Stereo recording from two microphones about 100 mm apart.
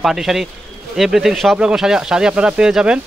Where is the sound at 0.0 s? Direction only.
5° right (ahead or behind).